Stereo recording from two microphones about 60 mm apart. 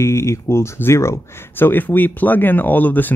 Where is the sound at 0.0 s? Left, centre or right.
Left.